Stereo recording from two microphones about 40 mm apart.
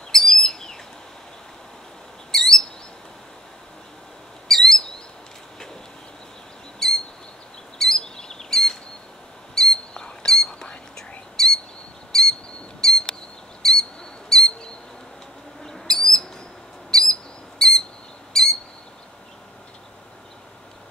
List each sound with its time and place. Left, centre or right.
0.1 s bird vocalization: centre
2.3 s bird: centre
4.5 s bird: centre
6.8 s bird: centre
7.8 s chirp: centre
9.6 s squawk: centre
10.5 s whispering: left
11.0 s whispering: centre
12.1 s bird: centre
15.6 s owl: centre
16.9 s bird: centre